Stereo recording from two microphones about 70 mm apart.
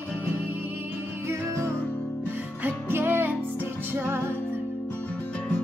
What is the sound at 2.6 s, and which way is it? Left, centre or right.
Music, right.